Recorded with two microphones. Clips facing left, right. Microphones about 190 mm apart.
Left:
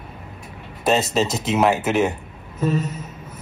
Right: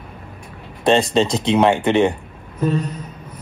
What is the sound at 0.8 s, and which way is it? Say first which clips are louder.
A man's voice: right 4 dB; 5° left (ahead or behind).